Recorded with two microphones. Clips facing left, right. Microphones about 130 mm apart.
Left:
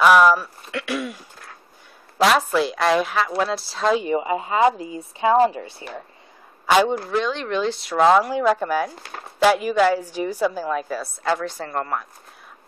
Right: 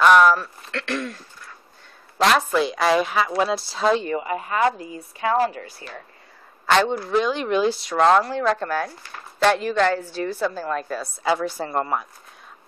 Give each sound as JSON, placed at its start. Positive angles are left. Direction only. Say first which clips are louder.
{"t": 0.0, "sound": "speech", "louder": "even", "side_deg": 5}
{"t": 4.0, "sound": "a woman's voice", "louder": "left 3 dB", "side_deg": 20}
{"t": 6.6, "sound": "a man's voice", "louder": "left 2 dB", "side_deg": 10}
{"t": 7.1, "sound": "a woman's voice", "louder": "right 2 dB", "side_deg": -5}
{"t": 11.2, "sound": "speech", "louder": "right 2 dB", "side_deg": -5}